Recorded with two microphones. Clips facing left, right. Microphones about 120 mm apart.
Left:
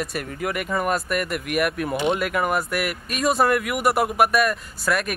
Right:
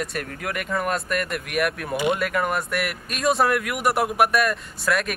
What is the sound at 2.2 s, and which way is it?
Speech, 5° left (ahead or behind).